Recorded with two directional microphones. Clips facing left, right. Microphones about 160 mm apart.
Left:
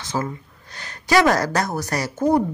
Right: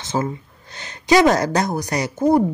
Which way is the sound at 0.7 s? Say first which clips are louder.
Right 3 dB; 20° right (ahead or behind).